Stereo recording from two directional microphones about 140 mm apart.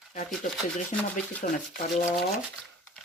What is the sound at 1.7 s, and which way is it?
Speech, 70° left (ahead or behind).